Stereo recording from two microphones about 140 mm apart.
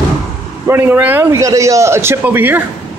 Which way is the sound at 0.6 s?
15° right (ahead or behind).